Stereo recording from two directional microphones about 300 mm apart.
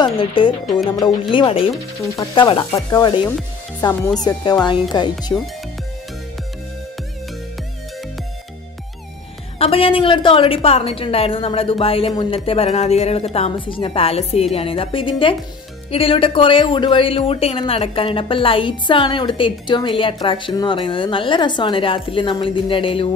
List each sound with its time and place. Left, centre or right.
0.0 s music: centre
1.3 s speech: centre
9.6 s a woman's voice: centre